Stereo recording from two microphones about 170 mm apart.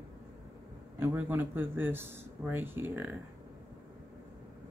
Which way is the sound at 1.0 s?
15° right (ahead or behind).